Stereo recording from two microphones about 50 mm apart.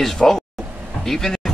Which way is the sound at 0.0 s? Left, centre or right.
Centre.